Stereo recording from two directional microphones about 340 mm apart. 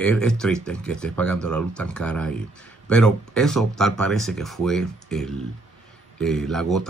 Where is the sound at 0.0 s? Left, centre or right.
Centre.